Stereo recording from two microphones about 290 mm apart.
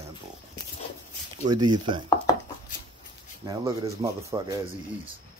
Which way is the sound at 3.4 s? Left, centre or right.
Centre.